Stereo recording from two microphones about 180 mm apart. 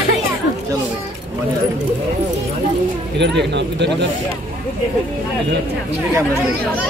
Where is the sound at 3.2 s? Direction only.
75° right (ahead or behind).